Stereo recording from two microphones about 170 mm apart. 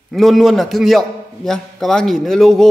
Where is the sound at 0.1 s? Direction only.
Centre (ahead or behind).